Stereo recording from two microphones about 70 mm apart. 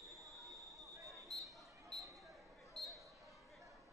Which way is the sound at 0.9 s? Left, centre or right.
Right.